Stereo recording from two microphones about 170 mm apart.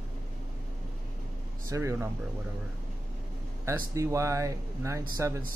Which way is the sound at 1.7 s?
15° right (ahead or behind).